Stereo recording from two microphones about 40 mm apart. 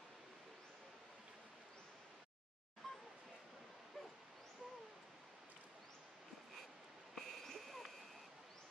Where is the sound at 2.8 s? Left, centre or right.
Centre.